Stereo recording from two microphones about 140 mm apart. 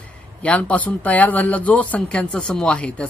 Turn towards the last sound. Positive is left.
turn(degrees=10)  # may be behind; listen again after turning